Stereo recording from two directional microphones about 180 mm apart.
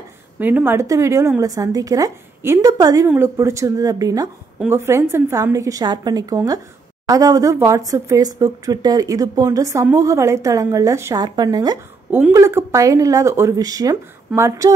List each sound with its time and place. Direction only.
0.4 s a woman's voice: 10° right (ahead or behind)